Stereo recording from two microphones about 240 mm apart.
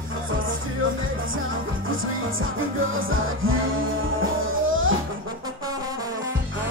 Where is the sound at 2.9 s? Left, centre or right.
Right.